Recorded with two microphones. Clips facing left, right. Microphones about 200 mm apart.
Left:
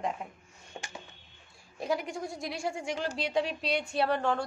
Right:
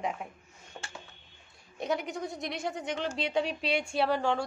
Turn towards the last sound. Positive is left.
turn(degrees=0)  # may be behind; listen again after turning